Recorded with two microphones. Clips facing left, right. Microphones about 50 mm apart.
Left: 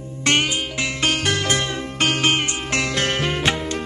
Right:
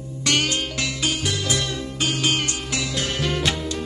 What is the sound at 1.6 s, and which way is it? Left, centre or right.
Music, left.